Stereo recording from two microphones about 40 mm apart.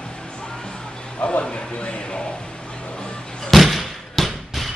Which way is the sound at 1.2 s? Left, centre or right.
Left.